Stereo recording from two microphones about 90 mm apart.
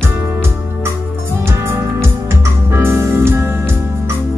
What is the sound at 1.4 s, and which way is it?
Music, 30° right (ahead or behind).